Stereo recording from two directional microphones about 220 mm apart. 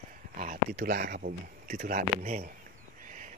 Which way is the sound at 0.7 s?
45° right (ahead or behind).